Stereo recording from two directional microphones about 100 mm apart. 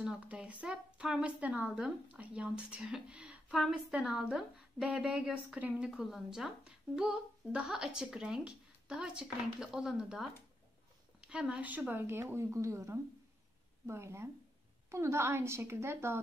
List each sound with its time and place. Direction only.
0.0 s a woman's voice: 10° right (ahead or behind)